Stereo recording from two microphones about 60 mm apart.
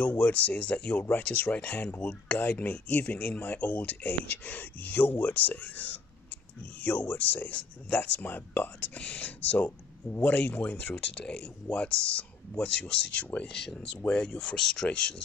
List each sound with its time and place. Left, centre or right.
0.0 s speech: left
13.5 s speech: centre